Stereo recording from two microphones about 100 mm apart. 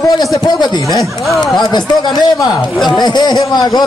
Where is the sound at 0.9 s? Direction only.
30° right (ahead or behind).